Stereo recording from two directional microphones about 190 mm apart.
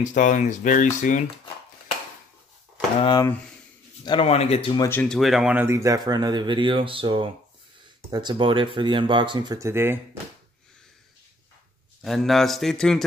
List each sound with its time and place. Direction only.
0.0 s speech: 40° left (ahead or behind)
3.0 s speech: 25° left (ahead or behind)
4.7 s speech: 10° left (ahead or behind); by 9.9 s 15° right (ahead or behind)
12.0 s speech: centre (ahead or behind)